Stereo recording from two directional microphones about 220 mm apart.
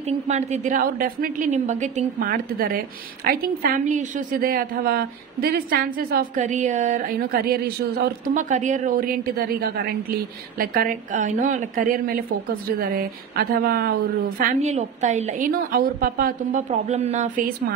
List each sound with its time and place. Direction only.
0.3 s a woman's voice: 30° right (ahead or behind)
14.4 s a woman's voice: 35° right (ahead or behind)